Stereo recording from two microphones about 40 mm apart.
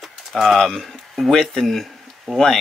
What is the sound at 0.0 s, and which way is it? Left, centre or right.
Bird, centre.